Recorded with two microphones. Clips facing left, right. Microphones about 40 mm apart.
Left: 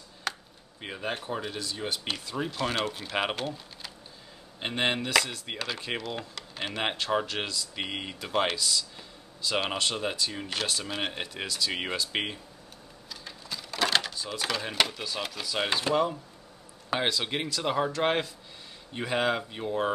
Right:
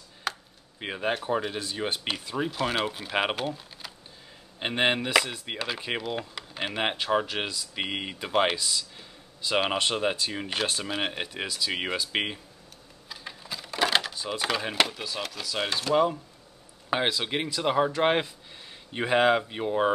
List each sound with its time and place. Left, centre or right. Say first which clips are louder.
0.3 s computer keyboard: right 2 dB; centre
0.7 s speech: right 5 dB; right
2.0 s speech: right 3 dB; centre
13.1 s a sound: right 2 dB; centre
14.1 s speech: right 3 dB; centre
15.9 s speech: right 3 dB; centre